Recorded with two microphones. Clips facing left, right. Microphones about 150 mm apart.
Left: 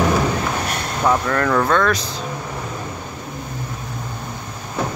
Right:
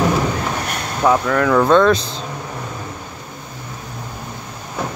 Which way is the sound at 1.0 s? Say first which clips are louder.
Right 3 dB; 5° right (ahead or behind).